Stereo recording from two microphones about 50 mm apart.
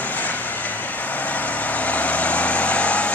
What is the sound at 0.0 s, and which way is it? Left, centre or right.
Vehicle, left.